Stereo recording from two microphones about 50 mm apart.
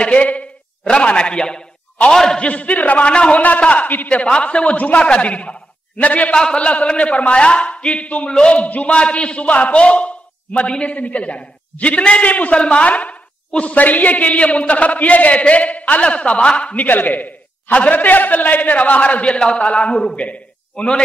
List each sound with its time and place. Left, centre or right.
0.0 s a man's voice: left
2.4 s a man's voice: left
6.3 s a man's voice: centre
16.8 s a man's voice: left; by 20.1 s centre
20.2 s a sound: left